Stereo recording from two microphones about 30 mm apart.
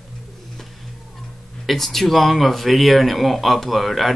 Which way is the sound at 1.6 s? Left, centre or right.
Centre.